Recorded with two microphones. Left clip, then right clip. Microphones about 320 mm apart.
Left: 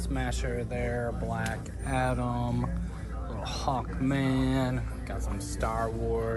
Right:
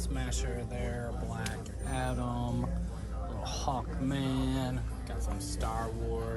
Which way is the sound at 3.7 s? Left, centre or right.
Centre.